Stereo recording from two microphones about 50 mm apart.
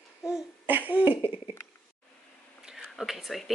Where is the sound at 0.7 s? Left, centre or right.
Right.